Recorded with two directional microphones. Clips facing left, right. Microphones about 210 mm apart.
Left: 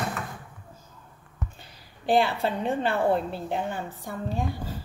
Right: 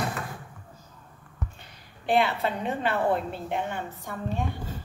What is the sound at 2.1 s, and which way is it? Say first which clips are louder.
Speech: left 1 dB; 30° left (ahead or behind).